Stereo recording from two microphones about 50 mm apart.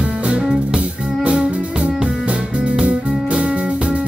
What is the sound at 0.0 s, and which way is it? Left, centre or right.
Music, right.